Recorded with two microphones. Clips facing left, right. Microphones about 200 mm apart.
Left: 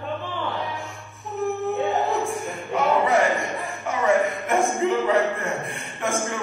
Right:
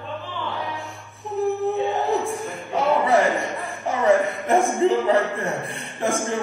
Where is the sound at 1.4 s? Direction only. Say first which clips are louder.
Right 3 dB; 35° right (ahead or behind).